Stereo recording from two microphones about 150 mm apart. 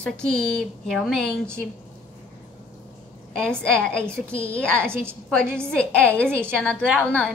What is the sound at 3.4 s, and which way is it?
A woman's voice, 5° left (ahead or behind).